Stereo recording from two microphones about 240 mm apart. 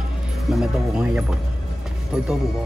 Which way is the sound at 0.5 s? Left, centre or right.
Centre.